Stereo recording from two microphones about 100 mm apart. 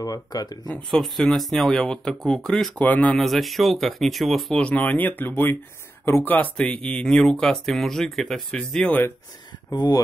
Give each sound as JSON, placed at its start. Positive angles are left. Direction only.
{"t": 0.0, "sound": "speech", "side_deg": 40}
{"t": 0.8, "sound": "speech", "side_deg": 0}
{"t": 3.2, "sound": "speech", "side_deg": 0}
{"t": 9.7, "sound": "speech", "side_deg": 40}